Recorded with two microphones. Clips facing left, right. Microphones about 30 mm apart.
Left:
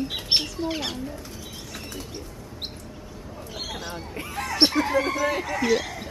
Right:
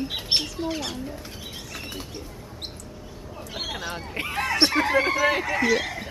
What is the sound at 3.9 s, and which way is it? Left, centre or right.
Basketball bounce, right.